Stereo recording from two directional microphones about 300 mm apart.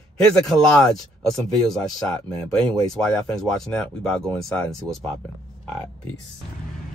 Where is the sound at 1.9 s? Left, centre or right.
Centre.